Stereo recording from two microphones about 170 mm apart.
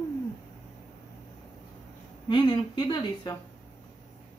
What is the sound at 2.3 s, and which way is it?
Speech, 25° left (ahead or behind).